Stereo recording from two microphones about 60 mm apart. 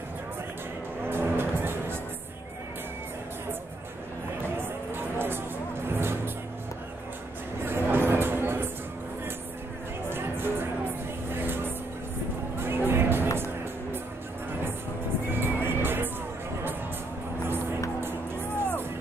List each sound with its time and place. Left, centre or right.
1.0 s music: right
4.4 s a sound: right
5.9 s music: right
7.6 s vehicle: right
10.0 s music: right
11.2 s vehicle: right
12.5 s music: right
15.2 s music: right